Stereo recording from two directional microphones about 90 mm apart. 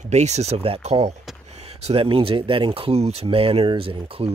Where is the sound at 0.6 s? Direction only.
90° right.